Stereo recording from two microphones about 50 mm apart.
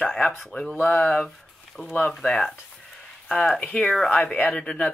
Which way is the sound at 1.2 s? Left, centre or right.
Centre.